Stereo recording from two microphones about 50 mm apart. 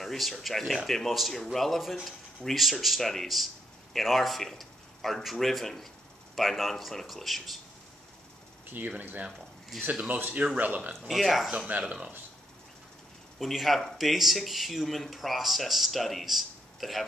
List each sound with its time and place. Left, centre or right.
0.0 s speech: centre
8.6 s speech: right
11.1 s speech: centre
11.5 s speech: right
13.4 s speech: centre